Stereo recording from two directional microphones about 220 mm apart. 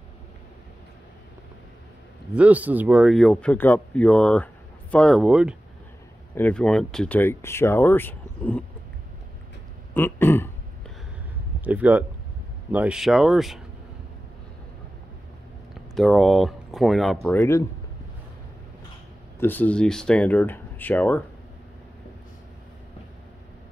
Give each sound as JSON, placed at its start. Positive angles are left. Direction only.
{"t": 2.3, "sound": "speech", "side_deg": -5}
{"t": 9.9, "sound": "speech", "side_deg": 10}
{"t": 11.6, "sound": "speech", "side_deg": -5}
{"t": 15.7, "sound": "speech", "side_deg": 0}
{"t": 19.4, "sound": "speech", "side_deg": 10}